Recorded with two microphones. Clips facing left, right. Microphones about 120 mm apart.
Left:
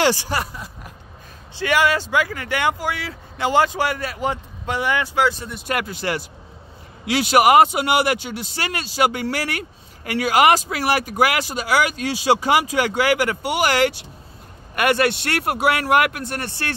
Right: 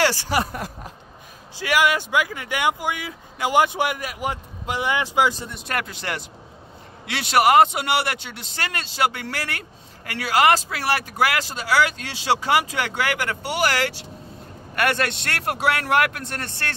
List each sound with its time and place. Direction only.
0.0 s a man's voice: 15° left (ahead or behind)
1.6 s speech: 10° right (ahead or behind)
5.5 s speech: 5° left (ahead or behind)